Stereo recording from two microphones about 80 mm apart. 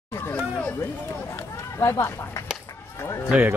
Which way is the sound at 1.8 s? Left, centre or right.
Left.